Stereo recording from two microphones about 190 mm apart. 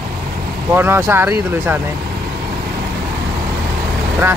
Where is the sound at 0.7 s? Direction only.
10° right (ahead or behind).